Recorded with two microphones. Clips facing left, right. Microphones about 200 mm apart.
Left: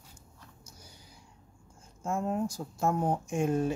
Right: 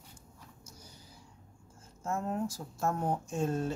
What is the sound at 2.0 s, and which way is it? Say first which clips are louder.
Speech: left 3 dB; 15° left (ahead or behind).